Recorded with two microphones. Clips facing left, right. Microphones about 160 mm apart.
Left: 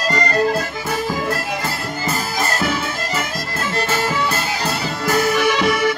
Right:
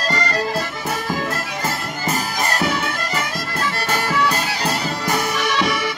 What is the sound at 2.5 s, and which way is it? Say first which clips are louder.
Music: right 1 dB; 15° right (ahead or behind).